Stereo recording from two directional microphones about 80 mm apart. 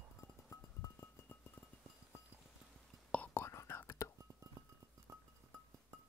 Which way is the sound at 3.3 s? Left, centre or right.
Left.